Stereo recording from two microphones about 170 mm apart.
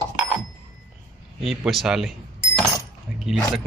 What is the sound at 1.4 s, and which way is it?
Speech, centre (ahead or behind).